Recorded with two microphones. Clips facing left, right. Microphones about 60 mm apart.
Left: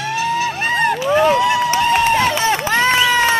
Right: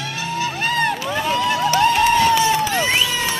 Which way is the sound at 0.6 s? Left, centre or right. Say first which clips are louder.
Left 1 dB; left.